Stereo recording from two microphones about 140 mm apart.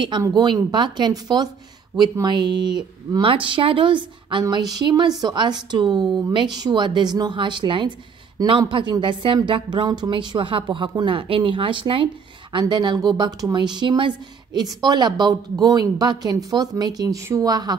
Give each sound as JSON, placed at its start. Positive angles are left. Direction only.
{"t": 0.3, "sound": "a woman's voice", "side_deg": -30}